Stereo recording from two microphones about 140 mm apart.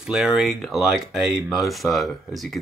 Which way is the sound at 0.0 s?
5° right (ahead or behind).